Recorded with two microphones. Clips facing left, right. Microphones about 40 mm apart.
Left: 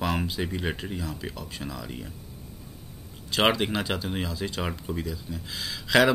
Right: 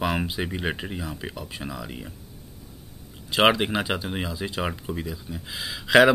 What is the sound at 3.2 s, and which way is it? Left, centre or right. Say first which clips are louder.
Speech: right 3 dB; centre.